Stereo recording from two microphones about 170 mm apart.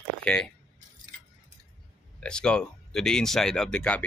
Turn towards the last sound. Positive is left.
turn(degrees=5)  # may be behind; listen again after turning